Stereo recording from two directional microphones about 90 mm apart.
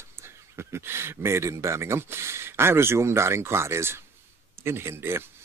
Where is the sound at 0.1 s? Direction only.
30° right (ahead or behind).